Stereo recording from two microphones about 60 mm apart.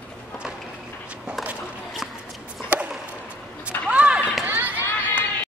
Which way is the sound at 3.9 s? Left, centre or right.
Centre.